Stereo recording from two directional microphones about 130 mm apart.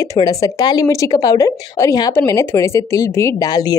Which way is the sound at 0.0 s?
30° left (ahead or behind).